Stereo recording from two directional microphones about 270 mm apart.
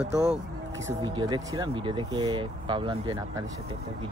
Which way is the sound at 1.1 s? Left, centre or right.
Centre.